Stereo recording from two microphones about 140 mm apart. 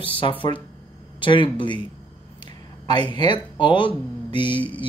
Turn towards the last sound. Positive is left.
turn(degrees=35)  # may be behind; listen again after turning